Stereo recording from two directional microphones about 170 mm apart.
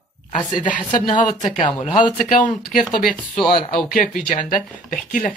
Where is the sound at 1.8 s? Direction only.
45° left (ahead or behind).